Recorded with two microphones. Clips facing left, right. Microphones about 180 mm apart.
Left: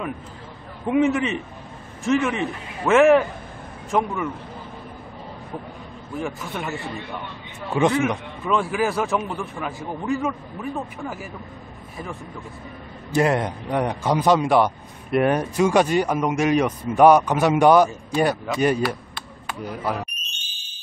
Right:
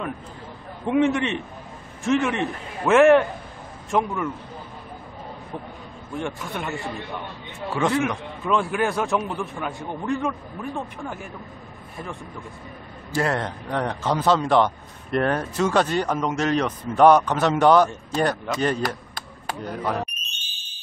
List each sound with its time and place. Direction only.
0.8 s a man's voice: centre (ahead or behind)
6.1 s a man's voice: centre (ahead or behind)
7.8 s a man's voice: 20° left (ahead or behind)
8.5 s a man's voice: centre (ahead or behind)
13.1 s a man's voice: 15° left (ahead or behind)